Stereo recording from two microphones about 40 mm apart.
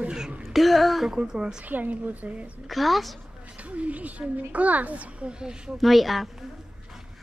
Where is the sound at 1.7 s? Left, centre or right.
Right.